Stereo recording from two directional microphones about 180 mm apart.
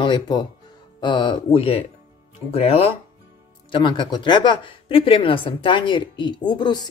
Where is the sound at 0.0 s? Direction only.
25° left (ahead or behind).